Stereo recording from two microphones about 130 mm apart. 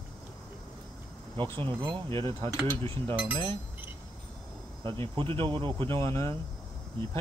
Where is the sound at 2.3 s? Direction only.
20° left (ahead or behind).